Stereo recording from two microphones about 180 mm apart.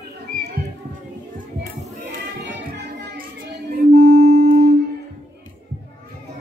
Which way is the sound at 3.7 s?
55° right (ahead or behind).